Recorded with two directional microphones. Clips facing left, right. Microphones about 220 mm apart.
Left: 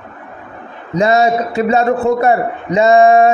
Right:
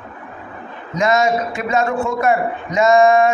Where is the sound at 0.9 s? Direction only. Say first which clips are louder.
Left 4 dB; 35° left (ahead or behind).